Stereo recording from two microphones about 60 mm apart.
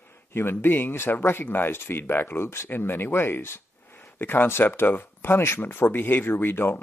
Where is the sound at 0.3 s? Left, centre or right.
Left.